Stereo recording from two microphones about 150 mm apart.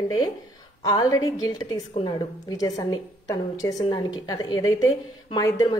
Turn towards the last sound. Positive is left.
turn(degrees=25)  # may be behind; listen again after turning